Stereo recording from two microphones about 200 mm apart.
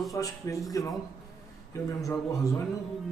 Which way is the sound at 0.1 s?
15° left (ahead or behind).